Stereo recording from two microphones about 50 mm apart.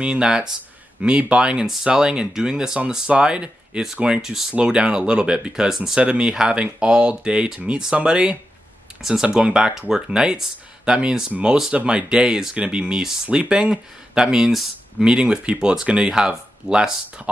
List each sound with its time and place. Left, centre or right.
0.0 s speech: centre
4.6 s speech: centre
9.0 s speech: centre
11.4 s speech: centre
11.7 s speech: right
15.1 s speech: centre